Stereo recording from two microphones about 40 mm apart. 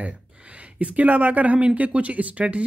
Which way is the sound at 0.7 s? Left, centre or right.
Right.